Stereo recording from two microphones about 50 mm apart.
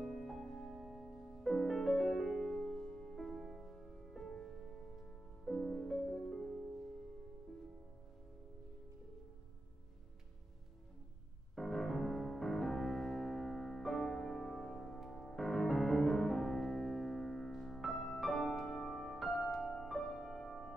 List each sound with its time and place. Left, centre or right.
0.0 s music: centre
2.3 s music: centre
11.5 s music: centre
19.1 s music: centre